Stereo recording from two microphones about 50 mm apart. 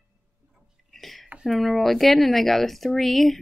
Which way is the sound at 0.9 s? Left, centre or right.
Centre.